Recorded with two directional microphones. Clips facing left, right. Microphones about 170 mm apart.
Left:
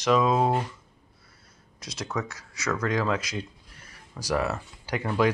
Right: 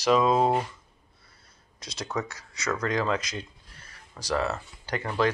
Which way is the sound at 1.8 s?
5° left (ahead or behind).